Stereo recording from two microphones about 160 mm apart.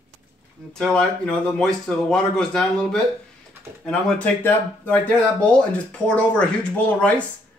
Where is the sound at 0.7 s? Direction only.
5° left (ahead or behind).